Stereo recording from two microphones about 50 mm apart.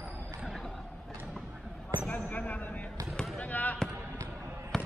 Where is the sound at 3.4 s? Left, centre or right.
Left.